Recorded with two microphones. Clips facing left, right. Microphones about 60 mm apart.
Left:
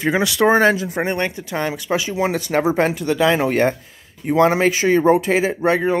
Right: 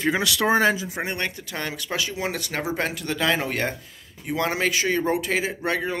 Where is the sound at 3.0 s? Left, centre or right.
Centre.